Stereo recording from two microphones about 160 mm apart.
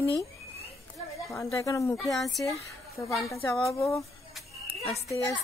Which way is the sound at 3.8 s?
15° left (ahead or behind).